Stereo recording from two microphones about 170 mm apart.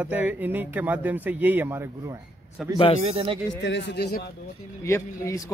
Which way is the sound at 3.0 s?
30° right (ahead or behind).